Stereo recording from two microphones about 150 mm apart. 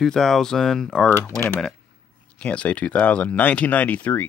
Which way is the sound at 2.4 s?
5° left (ahead or behind).